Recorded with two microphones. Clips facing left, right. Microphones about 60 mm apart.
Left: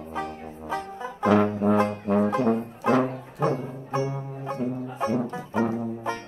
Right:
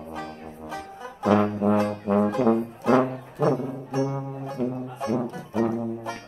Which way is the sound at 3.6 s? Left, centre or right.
Left.